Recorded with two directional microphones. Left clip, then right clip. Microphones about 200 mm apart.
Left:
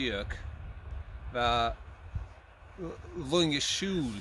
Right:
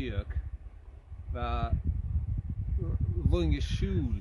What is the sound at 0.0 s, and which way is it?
Speech, 25° left (ahead or behind).